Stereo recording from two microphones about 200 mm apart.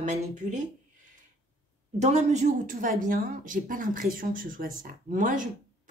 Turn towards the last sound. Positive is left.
turn(degrees=-40)  # may be behind; listen again after turning